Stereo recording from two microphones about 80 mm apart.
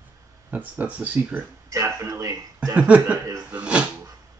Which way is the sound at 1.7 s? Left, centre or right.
Right.